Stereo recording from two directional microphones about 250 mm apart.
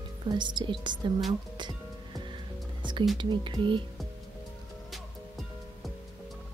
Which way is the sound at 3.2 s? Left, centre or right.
Centre.